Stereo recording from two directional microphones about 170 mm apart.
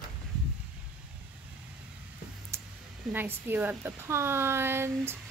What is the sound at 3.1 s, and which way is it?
Speech, 15° right (ahead or behind).